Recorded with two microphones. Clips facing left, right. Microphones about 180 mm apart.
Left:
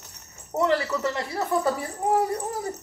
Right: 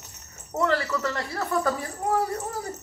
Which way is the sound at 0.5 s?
15° left (ahead or behind).